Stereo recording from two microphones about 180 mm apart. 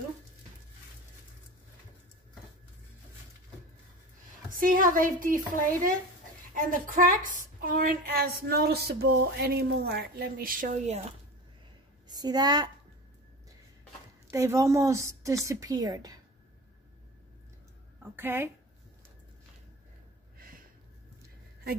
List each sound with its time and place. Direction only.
4.5 s a woman's voice: 50° right (ahead or behind)
12.1 s a woman's voice: 20° right (ahead or behind)
14.3 s a woman's voice: 15° right (ahead or behind)
18.0 s a woman's voice: 10° right (ahead or behind)